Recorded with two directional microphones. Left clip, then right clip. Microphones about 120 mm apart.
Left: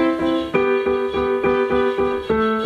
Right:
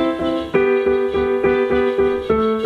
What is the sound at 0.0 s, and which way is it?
Music, 30° left (ahead or behind).